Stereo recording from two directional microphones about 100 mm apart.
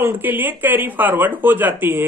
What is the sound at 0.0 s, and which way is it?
Speech, 20° right (ahead or behind).